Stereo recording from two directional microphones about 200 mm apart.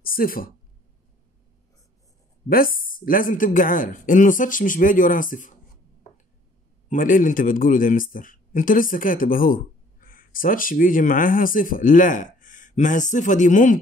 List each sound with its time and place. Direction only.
0.0 s speech: 45° left (ahead or behind)
2.5 s speech: 45° left (ahead or behind)
6.9 s speech: 40° left (ahead or behind)